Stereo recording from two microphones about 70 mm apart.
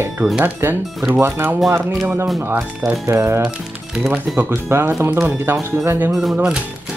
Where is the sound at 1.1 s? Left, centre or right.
Right.